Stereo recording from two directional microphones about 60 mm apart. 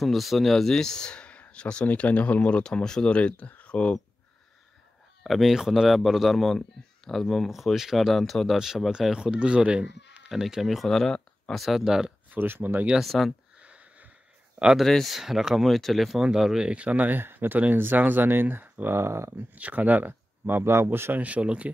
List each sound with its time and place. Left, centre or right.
0.0 s speech: centre; by 2.6 s left
2.6 s speech: centre
5.2 s speech: centre
10.3 s speech: centre
12.3 s speech: right
13.0 s speech: centre
13.6 s sniff: right
14.9 s speech: centre
15.1 s speech: centre
16.7 s speech: right
18.9 s speech: right
19.5 s speech: right